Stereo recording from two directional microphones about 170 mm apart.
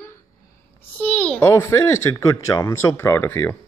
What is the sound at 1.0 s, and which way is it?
A child's voice, 5° left (ahead or behind).